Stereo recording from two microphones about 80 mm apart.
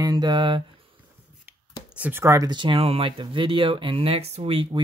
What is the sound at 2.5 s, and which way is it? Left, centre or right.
Speech, right.